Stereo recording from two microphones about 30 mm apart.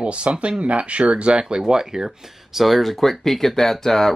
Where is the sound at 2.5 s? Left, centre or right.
Centre.